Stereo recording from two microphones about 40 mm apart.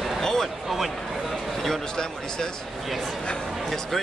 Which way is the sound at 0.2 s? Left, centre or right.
Centre.